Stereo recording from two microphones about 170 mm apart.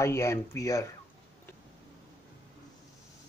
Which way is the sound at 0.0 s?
15° left (ahead or behind).